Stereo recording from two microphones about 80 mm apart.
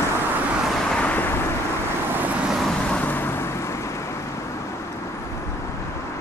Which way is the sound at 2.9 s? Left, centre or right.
Left.